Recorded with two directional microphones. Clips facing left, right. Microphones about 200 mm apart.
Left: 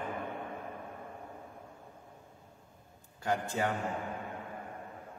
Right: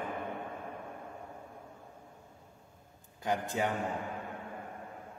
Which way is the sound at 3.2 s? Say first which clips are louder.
Even; 15° right (ahead or behind).